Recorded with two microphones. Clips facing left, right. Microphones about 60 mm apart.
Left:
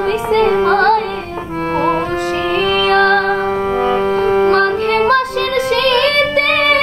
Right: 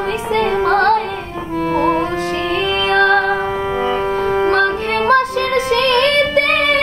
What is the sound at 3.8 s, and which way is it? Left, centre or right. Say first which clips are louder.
Music: left 3 dB; left.